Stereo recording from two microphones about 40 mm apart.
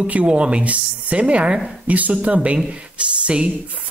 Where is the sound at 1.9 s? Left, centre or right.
Right.